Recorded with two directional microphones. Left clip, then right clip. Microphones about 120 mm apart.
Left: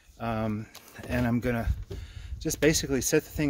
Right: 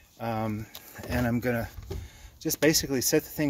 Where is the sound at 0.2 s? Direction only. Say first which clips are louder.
Even; 15° left (ahead or behind).